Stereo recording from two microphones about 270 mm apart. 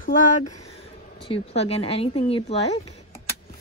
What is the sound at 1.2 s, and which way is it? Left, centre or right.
Speech, left.